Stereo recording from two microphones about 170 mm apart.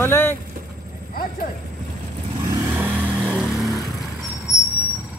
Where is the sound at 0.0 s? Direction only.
15° left (ahead or behind).